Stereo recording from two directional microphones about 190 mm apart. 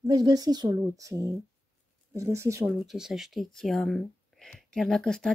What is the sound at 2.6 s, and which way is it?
Speech, centre (ahead or behind).